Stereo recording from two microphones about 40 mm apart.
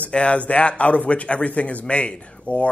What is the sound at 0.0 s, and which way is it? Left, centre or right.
Speech, left.